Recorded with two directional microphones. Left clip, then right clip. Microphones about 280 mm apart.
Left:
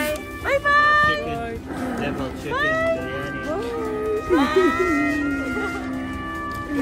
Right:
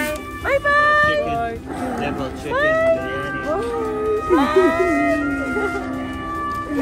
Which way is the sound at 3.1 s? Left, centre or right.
Right.